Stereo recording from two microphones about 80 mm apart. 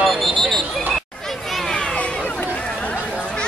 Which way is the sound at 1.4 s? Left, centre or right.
Centre.